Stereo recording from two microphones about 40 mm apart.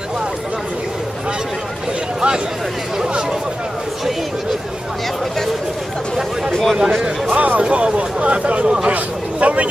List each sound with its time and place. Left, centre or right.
3.1 s a man's voice: centre
6.5 s speech: centre
7.0 s speech: right
7.6 s a man's voice: right
8.9 s speech: right